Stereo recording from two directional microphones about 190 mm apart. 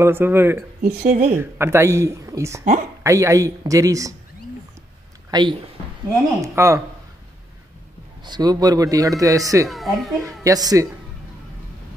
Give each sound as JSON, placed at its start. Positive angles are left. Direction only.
{"t": 0.0, "sound": "speech", "side_deg": -10}
{"t": 0.7, "sound": "speech", "side_deg": -50}
{"t": 1.3, "sound": "speech", "side_deg": -10}
{"t": 5.3, "sound": "speech", "side_deg": -25}
{"t": 8.3, "sound": "speech", "side_deg": -20}
{"t": 9.7, "sound": "a child's voice", "side_deg": 0}
{"t": 10.2, "sound": "speech", "side_deg": -20}